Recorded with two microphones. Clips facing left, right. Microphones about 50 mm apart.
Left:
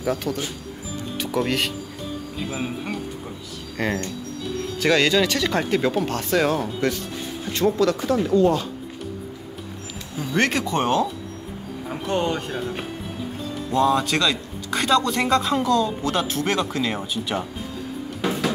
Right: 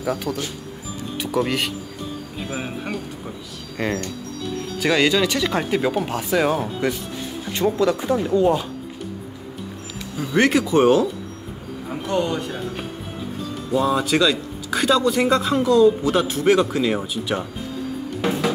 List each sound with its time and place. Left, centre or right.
0.0 s a man's voice: centre
2.3 s speech: centre
10.1 s speech: centre
12.1 s speech: left
13.7 s a man's voice: centre
18.2 s music: centre